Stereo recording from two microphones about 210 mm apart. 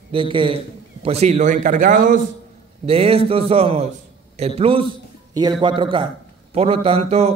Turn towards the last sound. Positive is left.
turn(degrees=-30)  # may be behind; listen again after turning